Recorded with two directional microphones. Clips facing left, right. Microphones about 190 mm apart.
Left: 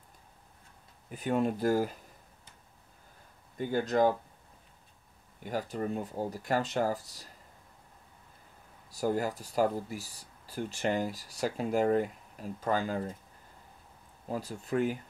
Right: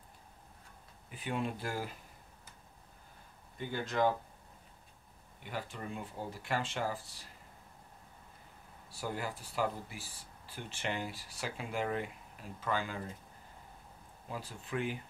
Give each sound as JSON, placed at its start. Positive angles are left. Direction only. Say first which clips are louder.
{"t": 1.1, "sound": "speech", "louder": "left 8 dB", "side_deg": 45}
{"t": 3.5, "sound": "speech", "louder": "left 7 dB", "side_deg": 40}
{"t": 5.4, "sound": "speech", "louder": "left 8 dB", "side_deg": 40}
{"t": 8.9, "sound": "speech", "louder": "left 9 dB", "side_deg": 40}
{"t": 14.3, "sound": "speech", "louder": "left 7 dB", "side_deg": 40}